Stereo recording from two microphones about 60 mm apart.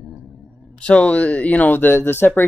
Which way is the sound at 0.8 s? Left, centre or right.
Centre.